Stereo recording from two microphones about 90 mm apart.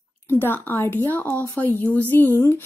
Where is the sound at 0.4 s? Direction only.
20° left (ahead or behind).